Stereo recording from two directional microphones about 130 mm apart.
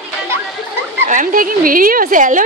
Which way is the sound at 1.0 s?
85° right.